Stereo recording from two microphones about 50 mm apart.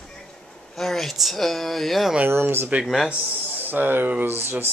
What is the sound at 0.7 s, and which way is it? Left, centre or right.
Speech, centre.